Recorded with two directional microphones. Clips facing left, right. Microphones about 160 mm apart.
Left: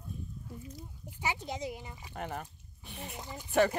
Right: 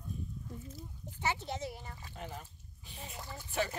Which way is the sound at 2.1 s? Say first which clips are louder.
Left 7 dB; 65° left (ahead or behind).